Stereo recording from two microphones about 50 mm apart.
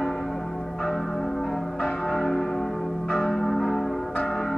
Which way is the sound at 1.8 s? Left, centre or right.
Centre.